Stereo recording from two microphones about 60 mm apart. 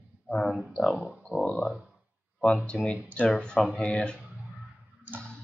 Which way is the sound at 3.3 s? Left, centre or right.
Centre.